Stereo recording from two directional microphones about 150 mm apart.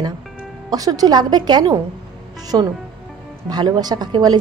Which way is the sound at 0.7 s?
25° right (ahead or behind).